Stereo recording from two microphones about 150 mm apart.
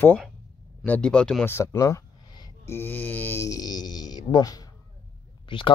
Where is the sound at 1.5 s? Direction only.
20° left (ahead or behind).